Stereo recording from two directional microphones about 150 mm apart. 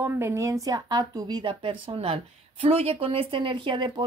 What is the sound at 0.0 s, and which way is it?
A woman's voice, 15° right (ahead or behind).